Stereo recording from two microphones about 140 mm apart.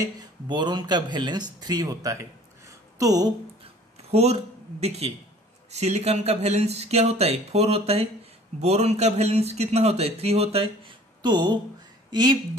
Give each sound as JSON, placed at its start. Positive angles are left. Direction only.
{"t": 0.0, "sound": "speech", "side_deg": -30}
{"t": 4.1, "sound": "speech", "side_deg": -50}